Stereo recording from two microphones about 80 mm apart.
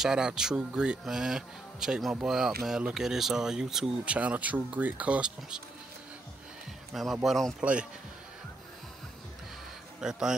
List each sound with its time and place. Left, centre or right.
0.0 s speech: centre
4.0 s speech: centre
6.9 s a man's voice: centre
9.9 s speech: centre